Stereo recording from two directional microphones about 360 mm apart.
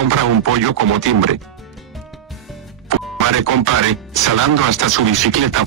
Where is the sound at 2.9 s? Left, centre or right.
Right.